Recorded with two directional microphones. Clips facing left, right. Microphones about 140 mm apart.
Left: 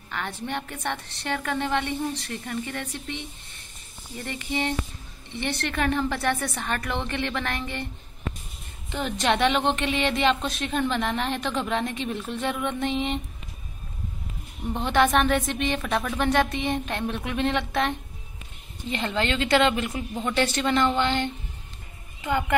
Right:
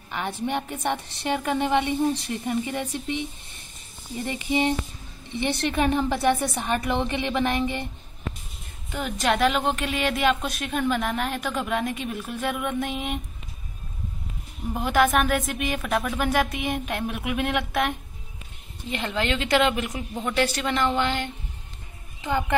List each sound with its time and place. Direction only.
0.1 s a woman's voice: 15° right (ahead or behind)
8.9 s a woman's voice: 5° right (ahead or behind)
14.7 s a woman's voice: 5° right (ahead or behind)